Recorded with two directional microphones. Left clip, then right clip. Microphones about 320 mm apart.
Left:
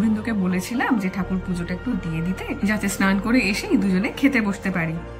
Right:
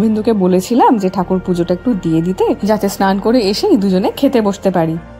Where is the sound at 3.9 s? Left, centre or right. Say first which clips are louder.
Right 8 dB; right.